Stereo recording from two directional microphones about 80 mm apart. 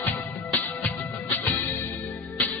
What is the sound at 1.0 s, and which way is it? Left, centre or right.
Music, left.